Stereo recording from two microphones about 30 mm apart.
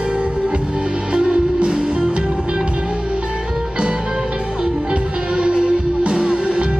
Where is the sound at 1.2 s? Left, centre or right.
Right.